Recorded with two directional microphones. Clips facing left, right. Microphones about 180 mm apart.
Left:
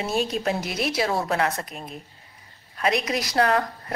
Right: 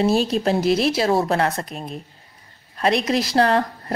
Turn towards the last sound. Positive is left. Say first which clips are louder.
# right 4 dB
turn(degrees=-30)  # may be behind; listen again after turning